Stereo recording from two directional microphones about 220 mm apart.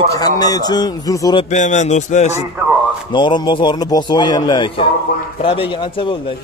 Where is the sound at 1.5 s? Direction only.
35° left (ahead or behind).